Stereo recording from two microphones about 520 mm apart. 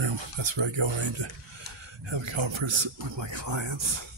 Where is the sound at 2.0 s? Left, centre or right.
Right.